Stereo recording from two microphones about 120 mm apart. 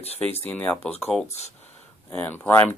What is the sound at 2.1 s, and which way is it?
Speech, 15° left (ahead or behind).